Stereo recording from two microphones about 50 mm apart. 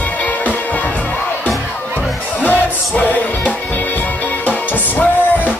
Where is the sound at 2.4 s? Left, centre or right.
Left.